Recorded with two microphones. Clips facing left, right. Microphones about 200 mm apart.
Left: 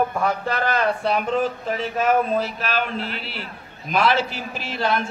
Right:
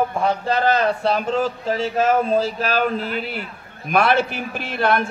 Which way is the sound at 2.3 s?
40° right (ahead or behind).